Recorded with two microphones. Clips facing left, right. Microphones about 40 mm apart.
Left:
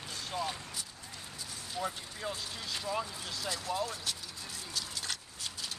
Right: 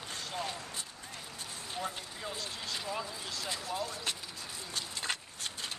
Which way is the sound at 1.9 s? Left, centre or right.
Centre.